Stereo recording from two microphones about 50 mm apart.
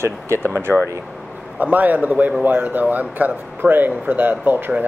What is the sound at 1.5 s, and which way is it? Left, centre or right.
Speech, right.